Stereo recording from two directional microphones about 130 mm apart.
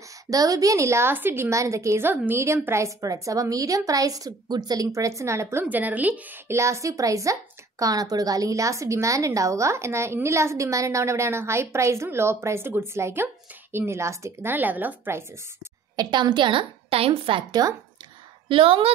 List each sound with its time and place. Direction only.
0.3 s a woman's voice: 25° right (ahead or behind)
16.0 s a woman's voice: 35° right (ahead or behind)
18.5 s a woman's voice: 45° right (ahead or behind)